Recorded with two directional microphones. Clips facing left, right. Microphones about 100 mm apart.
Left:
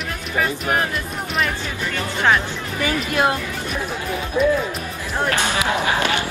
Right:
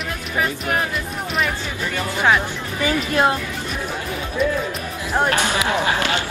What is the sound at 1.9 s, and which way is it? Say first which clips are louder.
Speech: right 1 dB; 10° right (ahead or behind).